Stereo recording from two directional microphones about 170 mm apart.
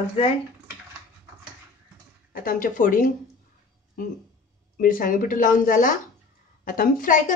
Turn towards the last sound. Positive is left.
turn(degrees=55)  # may be behind; listen again after turning